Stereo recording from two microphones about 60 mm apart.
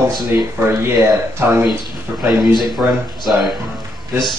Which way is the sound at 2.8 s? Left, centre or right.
Right.